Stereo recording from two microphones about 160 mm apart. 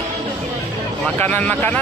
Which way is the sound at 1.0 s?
5° left (ahead or behind).